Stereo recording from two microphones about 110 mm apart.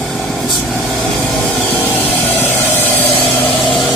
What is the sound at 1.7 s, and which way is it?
Vehicle, 15° left (ahead or behind).